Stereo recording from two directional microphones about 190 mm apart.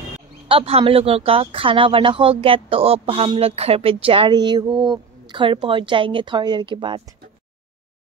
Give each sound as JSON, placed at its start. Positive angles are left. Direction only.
{"t": 0.5, "sound": "speech", "side_deg": -30}